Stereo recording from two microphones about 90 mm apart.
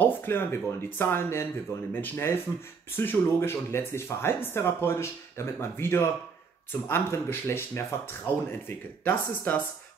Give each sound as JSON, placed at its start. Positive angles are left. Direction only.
{"t": 0.0, "sound": "speech", "side_deg": 25}